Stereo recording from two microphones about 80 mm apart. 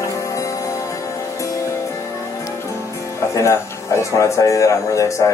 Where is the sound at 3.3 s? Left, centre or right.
Left.